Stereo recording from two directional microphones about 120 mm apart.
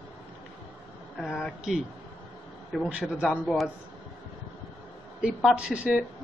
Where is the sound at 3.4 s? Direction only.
Centre (ahead or behind).